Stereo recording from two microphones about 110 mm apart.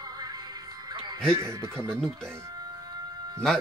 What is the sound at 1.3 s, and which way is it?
Speech, 25° right (ahead or behind).